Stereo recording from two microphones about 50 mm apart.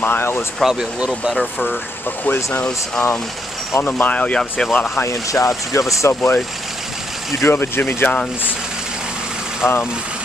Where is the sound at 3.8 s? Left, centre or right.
Left.